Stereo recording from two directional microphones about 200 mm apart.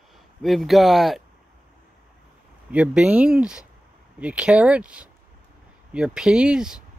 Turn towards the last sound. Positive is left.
turn(degrees=-5)  # may be behind; listen again after turning